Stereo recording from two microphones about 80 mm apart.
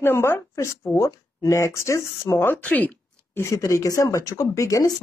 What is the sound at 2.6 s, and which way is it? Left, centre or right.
Speech, centre.